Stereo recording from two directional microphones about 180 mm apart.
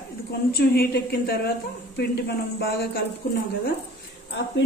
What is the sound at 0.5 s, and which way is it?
A woman's voice, 60° left (ahead or behind).